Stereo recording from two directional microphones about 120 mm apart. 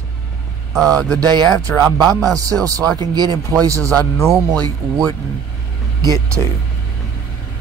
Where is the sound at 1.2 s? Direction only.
35° right (ahead or behind).